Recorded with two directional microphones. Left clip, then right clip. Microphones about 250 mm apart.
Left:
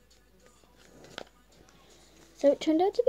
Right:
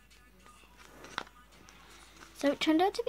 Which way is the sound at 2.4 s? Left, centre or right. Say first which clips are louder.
Left 4 dB; right.